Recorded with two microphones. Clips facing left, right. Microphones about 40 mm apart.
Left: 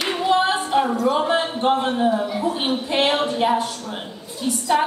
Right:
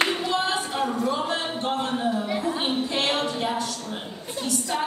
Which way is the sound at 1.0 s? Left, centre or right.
Left.